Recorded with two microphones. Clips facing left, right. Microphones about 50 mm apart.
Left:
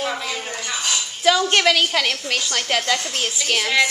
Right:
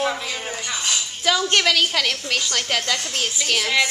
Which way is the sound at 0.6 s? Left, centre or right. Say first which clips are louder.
Left 1 dB; centre.